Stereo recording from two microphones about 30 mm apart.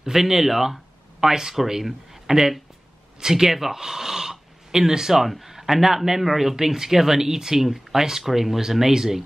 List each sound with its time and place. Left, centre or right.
0.0 s speech: centre